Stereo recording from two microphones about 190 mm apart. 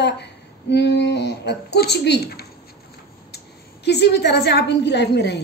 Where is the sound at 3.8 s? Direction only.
60° left (ahead or behind).